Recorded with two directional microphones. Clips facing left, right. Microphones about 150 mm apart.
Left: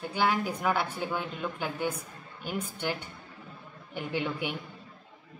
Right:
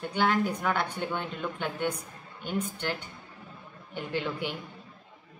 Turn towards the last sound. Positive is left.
turn(degrees=10)  # may be behind; listen again after turning